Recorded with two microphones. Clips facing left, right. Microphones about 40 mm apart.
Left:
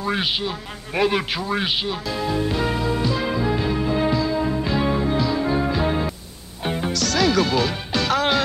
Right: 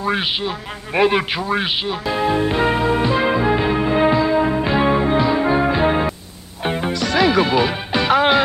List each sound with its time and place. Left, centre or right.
0.0 s a man's voice: centre
2.0 s music: right